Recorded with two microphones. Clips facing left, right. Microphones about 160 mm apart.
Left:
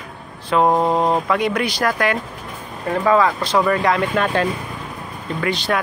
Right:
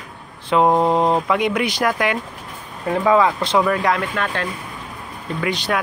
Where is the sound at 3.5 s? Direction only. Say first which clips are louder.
Left 1 dB; centre (ahead or behind).